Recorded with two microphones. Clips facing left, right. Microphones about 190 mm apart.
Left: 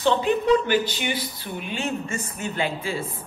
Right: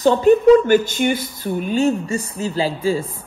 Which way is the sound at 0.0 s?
45° right (ahead or behind).